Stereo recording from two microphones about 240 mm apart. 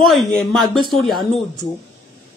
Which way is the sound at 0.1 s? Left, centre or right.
Centre.